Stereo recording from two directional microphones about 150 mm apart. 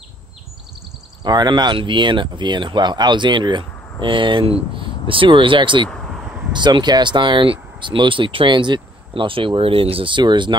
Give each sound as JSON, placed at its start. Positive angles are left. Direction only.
{"t": 1.2, "sound": "speech", "side_deg": -30}
{"t": 5.9, "sound": "a sound", "side_deg": 0}
{"t": 6.5, "sound": "speech", "side_deg": -30}